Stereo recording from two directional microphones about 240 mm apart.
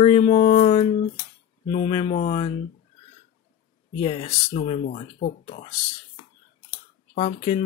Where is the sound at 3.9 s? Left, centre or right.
Left.